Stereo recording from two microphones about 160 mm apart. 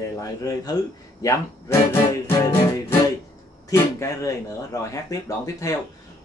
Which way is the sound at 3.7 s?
20° left (ahead or behind).